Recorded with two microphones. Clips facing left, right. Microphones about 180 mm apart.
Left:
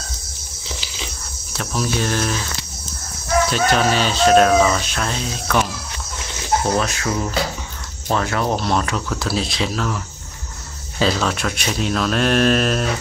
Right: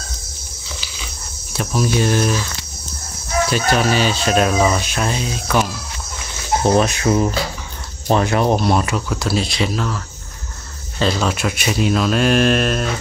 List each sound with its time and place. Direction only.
1.5 s speech: 10° right (ahead or behind)
3.5 s speech: 5° right (ahead or behind)
6.6 s cricket: 20° right (ahead or behind)
8.1 s speech: 20° right (ahead or behind); by 9.8 s centre (ahead or behind)
11.0 s speech: centre (ahead or behind)